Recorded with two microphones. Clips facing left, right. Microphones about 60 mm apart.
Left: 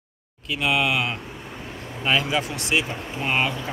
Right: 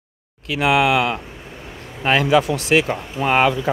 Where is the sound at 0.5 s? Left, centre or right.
Right.